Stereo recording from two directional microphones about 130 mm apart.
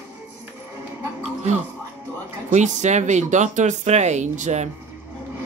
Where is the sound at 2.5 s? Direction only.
65° right (ahead or behind).